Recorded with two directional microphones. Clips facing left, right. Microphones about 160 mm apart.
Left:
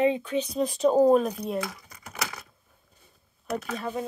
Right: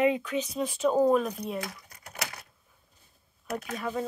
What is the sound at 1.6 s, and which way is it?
Speech, 90° left.